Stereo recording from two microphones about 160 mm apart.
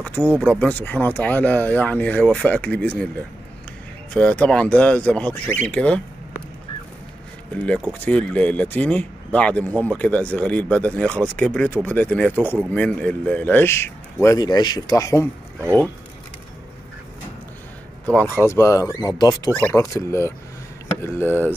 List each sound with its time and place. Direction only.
0.0 s speech: 10° left (ahead or behind)
4.1 s speech: 10° left (ahead or behind)
7.6 s speech: 10° left (ahead or behind)
18.0 s speech: 10° left (ahead or behind)